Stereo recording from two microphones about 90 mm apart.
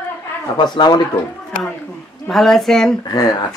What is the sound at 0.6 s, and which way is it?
Speech, 55° left (ahead or behind).